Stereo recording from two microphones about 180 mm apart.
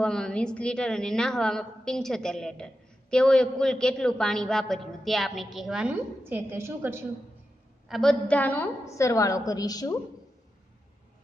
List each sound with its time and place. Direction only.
0.0 s a woman's voice: 5° left (ahead or behind); by 7.1 s 15° right (ahead or behind)
7.9 s a woman's voice: centre (ahead or behind); by 9.9 s 20° left (ahead or behind)